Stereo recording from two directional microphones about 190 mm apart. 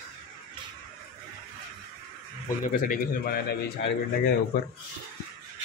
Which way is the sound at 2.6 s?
45° left (ahead or behind).